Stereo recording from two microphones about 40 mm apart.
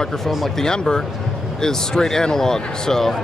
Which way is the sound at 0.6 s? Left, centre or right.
Centre.